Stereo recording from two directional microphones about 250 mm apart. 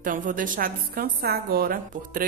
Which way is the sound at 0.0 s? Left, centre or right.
Right.